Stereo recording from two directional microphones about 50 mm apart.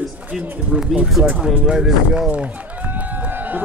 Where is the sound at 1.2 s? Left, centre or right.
Centre.